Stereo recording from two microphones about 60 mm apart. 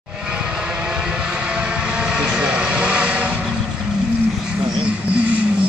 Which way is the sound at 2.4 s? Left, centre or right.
Centre.